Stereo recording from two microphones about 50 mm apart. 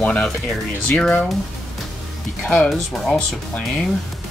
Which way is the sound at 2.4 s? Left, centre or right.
Centre.